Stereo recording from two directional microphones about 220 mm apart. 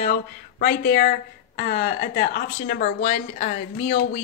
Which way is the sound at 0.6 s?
45° left (ahead or behind).